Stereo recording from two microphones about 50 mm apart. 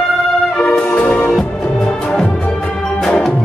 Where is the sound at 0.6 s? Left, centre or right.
Left.